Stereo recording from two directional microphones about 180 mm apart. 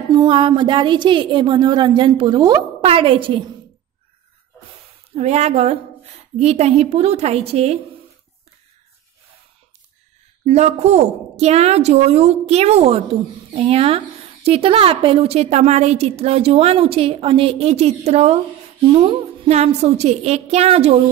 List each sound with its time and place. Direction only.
0.1 s a woman's voice: 25° right (ahead or behind)
5.1 s a woman's voice: 40° right (ahead or behind)
10.4 s a woman's voice: 40° right (ahead or behind)